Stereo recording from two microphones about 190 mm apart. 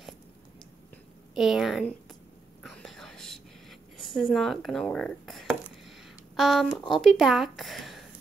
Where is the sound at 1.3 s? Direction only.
Centre (ahead or behind).